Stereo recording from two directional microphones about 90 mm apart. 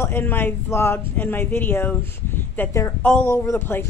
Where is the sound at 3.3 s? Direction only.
25° left (ahead or behind).